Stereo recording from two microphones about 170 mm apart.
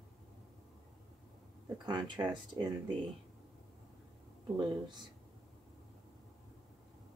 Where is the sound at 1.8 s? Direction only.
25° right (ahead or behind).